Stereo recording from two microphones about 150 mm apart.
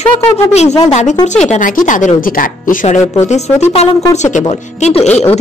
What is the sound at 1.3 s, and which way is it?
Speech, 50° left (ahead or behind).